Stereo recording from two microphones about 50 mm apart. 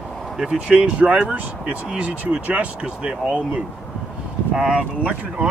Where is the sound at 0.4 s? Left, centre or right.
Centre.